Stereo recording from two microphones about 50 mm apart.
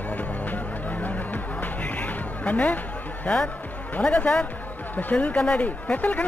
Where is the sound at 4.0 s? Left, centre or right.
Left.